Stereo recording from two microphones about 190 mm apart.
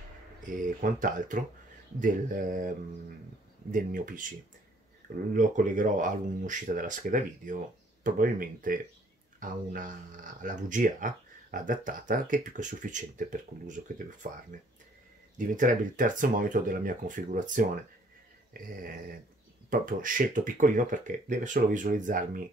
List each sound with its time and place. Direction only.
0.5 s speech: 45° right (ahead or behind)
3.7 s speech: 45° right (ahead or behind)